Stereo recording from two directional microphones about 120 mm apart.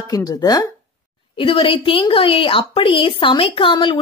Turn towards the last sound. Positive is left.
turn(degrees=45)  # may be behind; listen again after turning